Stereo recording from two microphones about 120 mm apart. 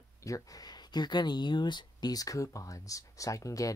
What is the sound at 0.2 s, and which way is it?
Speech, 30° left (ahead or behind).